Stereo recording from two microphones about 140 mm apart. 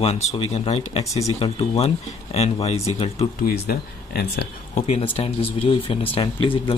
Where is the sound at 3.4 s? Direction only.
90° left.